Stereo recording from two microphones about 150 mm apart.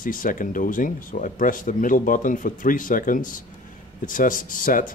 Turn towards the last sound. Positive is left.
turn(degrees=65)  # may be behind; listen again after turning